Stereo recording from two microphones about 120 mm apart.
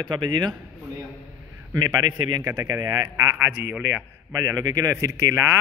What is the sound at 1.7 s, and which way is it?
A man's voice, 30° right (ahead or behind).